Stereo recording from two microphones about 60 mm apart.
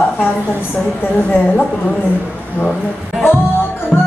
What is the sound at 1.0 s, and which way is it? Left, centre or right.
A woman's voice, left.